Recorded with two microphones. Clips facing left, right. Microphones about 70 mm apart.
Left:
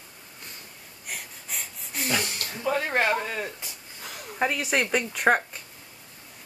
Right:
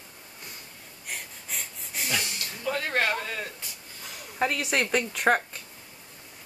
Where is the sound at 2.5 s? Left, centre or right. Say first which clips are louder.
Left 3 dB; centre.